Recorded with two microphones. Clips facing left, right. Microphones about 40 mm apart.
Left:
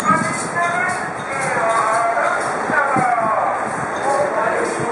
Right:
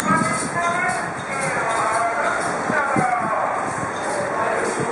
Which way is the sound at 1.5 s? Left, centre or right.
Centre.